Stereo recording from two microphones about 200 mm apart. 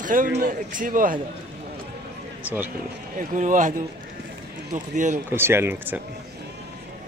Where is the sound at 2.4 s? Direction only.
10° right (ahead or behind).